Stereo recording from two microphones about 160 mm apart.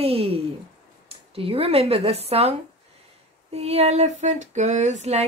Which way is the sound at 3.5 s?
40° right (ahead or behind).